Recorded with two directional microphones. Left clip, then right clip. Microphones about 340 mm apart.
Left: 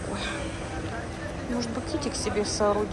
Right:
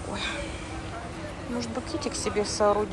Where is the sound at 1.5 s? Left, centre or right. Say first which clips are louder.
Left 1 dB; centre.